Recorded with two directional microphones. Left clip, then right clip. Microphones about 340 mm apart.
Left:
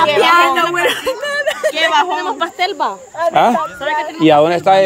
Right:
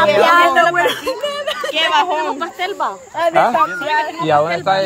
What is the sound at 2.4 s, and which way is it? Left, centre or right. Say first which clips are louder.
Speech: left 4 dB; left.